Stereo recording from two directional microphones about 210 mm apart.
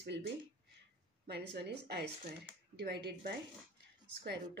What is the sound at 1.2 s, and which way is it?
Speech, 50° right (ahead or behind).